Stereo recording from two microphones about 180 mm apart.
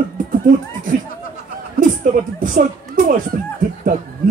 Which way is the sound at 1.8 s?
45° right (ahead or behind).